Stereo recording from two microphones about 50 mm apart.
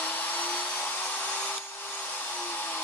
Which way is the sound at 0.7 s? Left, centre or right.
Left.